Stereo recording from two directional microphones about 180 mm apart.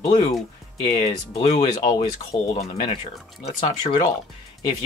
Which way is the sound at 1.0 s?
35° left (ahead or behind).